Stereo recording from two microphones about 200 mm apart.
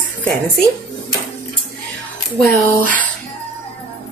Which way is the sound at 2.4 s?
40° right (ahead or behind).